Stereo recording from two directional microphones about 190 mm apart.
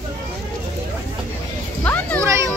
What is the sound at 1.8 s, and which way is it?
Children playing, 10° left (ahead or behind).